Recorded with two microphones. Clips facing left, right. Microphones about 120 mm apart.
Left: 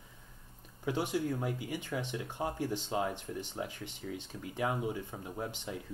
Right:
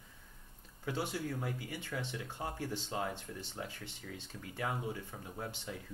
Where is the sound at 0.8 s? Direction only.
15° left (ahead or behind).